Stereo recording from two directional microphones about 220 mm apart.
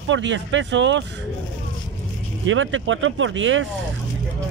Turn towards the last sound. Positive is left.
turn(degrees=-60)  # may be behind; listen again after turning